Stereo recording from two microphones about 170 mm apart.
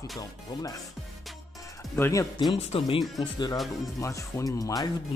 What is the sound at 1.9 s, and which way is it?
Speech, 15° left (ahead or behind).